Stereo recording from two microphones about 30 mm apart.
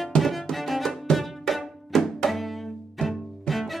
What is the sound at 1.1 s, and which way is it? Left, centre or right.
Music, left.